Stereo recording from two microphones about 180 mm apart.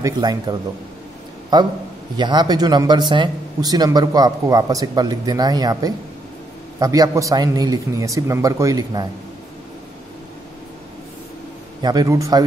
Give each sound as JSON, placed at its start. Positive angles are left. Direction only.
{"t": 0.0, "sound": "speech", "side_deg": -20}
{"t": 11.8, "sound": "speech", "side_deg": -20}